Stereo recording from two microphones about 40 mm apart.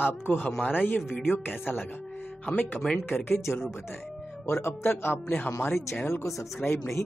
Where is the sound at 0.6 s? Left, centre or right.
Left.